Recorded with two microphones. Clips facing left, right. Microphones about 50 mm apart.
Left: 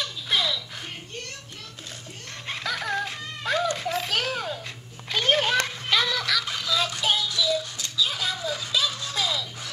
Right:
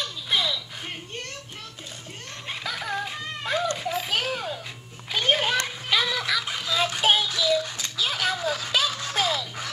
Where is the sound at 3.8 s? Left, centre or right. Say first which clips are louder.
Even; centre; by 7.9 s right.